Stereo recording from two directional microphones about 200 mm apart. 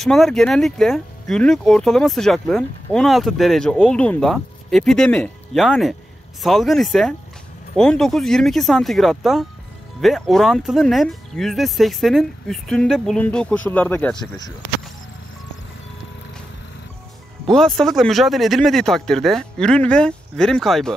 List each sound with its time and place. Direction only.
0.0 s speech: centre (ahead or behind)
17.5 s speech: centre (ahead or behind)